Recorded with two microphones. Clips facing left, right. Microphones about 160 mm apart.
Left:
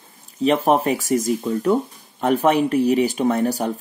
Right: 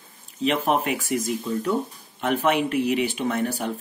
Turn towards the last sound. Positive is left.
turn(degrees=40)  # may be behind; listen again after turning